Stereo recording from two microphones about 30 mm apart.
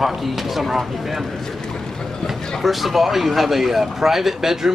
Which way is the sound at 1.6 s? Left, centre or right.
Left.